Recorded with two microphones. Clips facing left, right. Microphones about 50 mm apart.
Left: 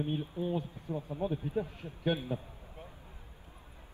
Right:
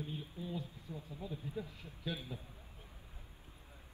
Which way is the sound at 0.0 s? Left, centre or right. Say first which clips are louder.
Left 10 dB; left.